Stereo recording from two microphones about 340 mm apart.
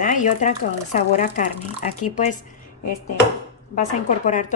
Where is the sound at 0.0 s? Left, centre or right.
Left.